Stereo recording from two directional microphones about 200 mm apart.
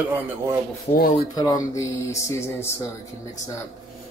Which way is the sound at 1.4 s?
20° left (ahead or behind).